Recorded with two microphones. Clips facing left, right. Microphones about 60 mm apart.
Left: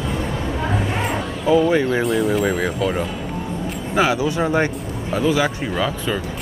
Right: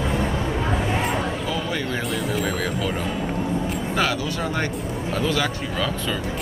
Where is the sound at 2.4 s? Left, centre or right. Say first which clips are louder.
Left 4 dB; centre.